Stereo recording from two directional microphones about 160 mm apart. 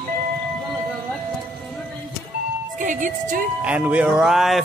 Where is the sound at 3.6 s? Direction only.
10° right (ahead or behind).